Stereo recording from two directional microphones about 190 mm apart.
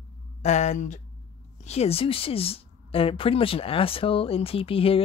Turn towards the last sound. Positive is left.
turn(degrees=30)  # may be behind; listen again after turning